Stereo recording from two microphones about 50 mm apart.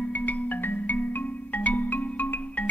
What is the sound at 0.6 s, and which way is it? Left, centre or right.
Marimba, left.